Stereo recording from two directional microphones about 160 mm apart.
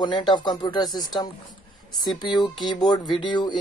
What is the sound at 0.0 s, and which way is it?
Speech, 30° left (ahead or behind).